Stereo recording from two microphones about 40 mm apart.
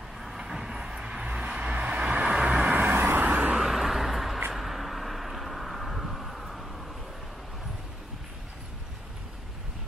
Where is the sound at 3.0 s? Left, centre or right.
Right.